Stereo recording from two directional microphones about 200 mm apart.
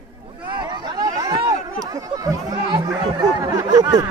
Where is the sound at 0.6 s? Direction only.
20° right (ahead or behind).